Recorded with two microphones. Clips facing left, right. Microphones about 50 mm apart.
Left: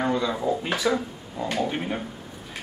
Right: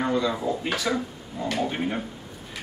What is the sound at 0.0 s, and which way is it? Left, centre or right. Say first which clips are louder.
Speech: even; centre.